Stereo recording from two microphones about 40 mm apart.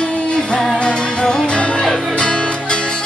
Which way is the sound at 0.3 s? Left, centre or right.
Left.